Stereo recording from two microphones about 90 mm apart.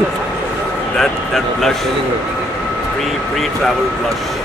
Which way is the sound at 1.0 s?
5° left (ahead or behind).